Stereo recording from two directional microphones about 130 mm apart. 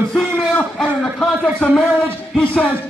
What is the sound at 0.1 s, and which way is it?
Speech, 5° left (ahead or behind).